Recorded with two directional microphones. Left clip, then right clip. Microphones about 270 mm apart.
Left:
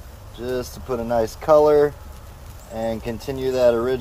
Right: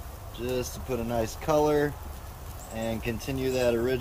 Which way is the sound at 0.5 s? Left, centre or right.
Centre.